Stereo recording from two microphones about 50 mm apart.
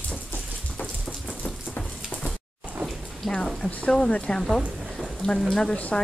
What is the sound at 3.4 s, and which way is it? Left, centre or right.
Speech, centre.